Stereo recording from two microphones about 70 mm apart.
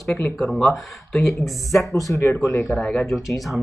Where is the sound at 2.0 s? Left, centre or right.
Left.